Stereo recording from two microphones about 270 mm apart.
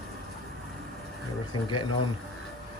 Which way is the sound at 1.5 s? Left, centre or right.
Centre.